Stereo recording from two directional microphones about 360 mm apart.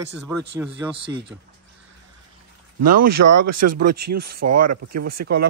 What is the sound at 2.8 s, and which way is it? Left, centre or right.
Speech, right.